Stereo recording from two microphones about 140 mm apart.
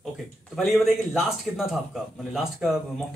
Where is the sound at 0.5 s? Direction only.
Centre (ahead or behind).